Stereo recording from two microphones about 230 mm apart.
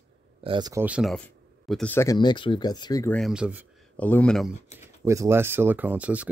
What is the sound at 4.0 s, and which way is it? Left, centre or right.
Speech, centre.